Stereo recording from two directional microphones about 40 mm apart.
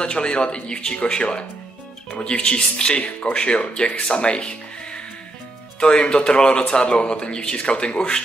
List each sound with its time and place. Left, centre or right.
0.0 s speech: left